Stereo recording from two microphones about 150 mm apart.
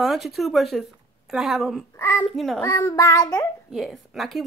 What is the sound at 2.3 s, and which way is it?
Speech, centre (ahead or behind).